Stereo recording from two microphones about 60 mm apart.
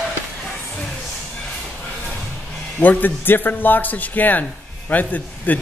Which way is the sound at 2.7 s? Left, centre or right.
Left.